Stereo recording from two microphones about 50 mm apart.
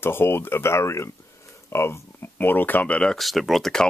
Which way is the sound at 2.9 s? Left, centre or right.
Left.